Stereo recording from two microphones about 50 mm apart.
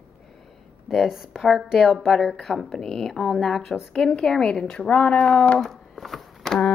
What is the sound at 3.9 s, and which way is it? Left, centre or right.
Speech, centre.